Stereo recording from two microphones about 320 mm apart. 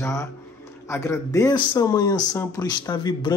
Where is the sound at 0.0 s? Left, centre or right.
Centre.